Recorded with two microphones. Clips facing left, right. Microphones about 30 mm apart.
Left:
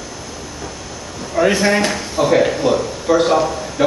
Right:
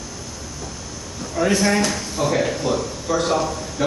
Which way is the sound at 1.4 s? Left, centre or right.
Left.